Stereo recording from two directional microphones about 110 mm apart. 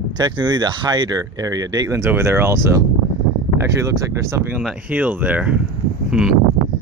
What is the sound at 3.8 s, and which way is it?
Speech, 25° right (ahead or behind).